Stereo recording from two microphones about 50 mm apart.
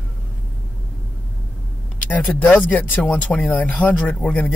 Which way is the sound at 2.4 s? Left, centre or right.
Left.